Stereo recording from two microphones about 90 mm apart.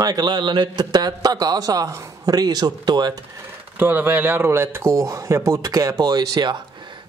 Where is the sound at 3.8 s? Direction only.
20° right (ahead or behind); by 6.6 s 50° right (ahead or behind).